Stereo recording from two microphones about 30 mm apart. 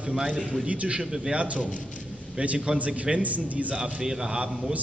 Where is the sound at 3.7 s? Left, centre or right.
Right.